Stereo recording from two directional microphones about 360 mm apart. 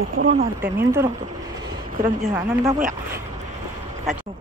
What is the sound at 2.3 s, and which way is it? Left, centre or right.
Speech, centre.